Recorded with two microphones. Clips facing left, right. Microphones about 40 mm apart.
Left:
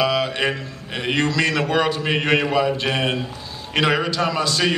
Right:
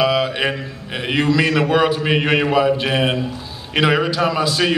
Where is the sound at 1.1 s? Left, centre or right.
Centre.